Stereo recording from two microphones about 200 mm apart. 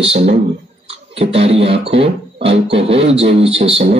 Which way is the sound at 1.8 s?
30° right (ahead or behind).